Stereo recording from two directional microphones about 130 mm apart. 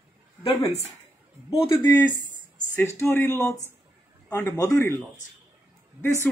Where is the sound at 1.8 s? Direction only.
35° left (ahead or behind).